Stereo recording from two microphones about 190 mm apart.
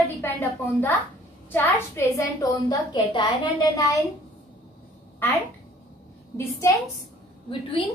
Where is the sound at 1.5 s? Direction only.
15° left (ahead or behind).